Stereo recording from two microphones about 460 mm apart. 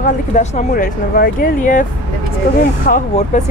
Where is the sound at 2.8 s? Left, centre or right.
Centre.